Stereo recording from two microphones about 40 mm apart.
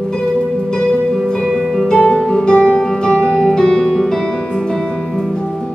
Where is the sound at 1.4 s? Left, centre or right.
Centre.